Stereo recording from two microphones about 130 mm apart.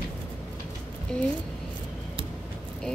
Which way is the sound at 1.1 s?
5° left (ahead or behind).